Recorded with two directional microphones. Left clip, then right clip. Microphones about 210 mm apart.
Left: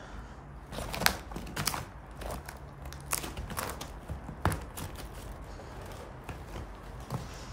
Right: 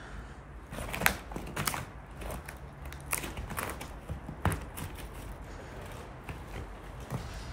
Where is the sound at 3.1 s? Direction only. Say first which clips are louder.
Even; 10° left (ahead or behind).